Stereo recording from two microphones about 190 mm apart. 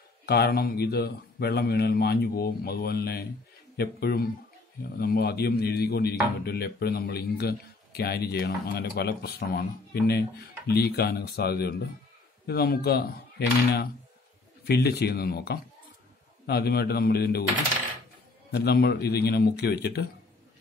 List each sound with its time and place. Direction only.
0.3 s a man's voice: 55° left (ahead or behind)
14.6 s a man's voice: 60° left (ahead or behind)
18.5 s a man's voice: 60° left (ahead or behind)